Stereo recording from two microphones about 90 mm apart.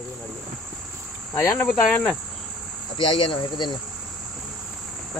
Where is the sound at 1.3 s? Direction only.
30° left (ahead or behind).